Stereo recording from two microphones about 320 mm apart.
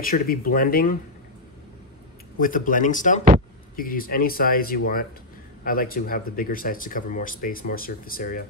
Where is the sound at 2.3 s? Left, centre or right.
Left.